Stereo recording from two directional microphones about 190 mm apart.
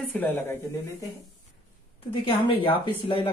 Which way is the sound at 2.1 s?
25° left (ahead or behind).